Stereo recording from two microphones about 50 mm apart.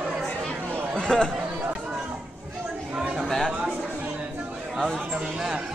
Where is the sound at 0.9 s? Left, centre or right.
Centre.